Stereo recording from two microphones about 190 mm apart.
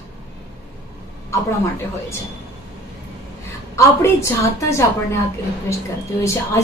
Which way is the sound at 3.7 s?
15° left (ahead or behind).